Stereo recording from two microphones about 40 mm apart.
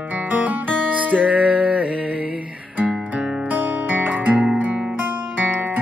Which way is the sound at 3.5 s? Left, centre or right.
Right.